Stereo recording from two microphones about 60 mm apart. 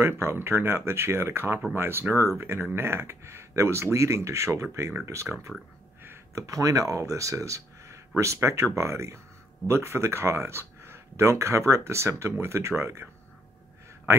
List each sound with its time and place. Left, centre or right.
0.0 s speech: right
6.3 s speech: right